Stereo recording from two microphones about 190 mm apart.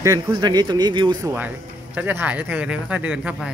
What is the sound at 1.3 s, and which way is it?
Speech, 10° right (ahead or behind).